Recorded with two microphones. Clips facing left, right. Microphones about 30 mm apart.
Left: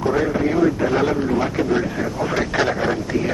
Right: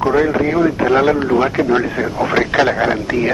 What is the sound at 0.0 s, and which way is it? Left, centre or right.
Speech, right.